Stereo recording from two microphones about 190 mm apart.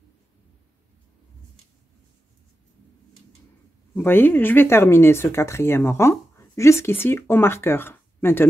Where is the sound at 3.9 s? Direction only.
10° left (ahead or behind).